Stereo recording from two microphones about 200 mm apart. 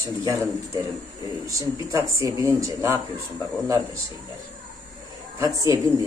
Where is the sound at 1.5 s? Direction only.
15° right (ahead or behind).